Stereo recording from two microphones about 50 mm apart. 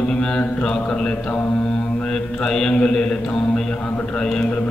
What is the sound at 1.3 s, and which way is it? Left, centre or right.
Mantra, left.